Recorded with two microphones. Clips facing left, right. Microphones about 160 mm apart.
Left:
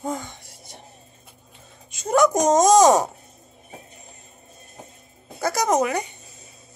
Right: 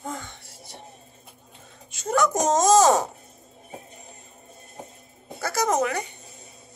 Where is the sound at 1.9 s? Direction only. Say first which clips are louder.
Left 4 dB; 15° left (ahead or behind).